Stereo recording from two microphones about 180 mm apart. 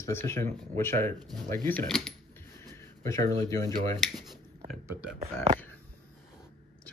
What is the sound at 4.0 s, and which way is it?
Speech, centre (ahead or behind).